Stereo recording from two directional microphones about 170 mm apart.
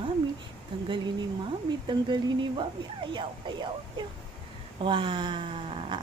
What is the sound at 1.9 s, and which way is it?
Speech, 25° right (ahead or behind).